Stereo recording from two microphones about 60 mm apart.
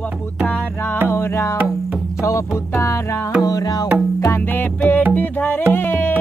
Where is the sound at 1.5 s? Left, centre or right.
Right.